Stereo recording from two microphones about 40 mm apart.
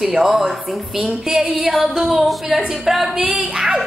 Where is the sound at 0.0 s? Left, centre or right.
Centre.